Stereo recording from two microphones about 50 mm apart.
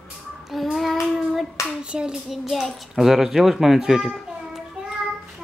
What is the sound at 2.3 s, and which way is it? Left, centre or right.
A child's voice, centre.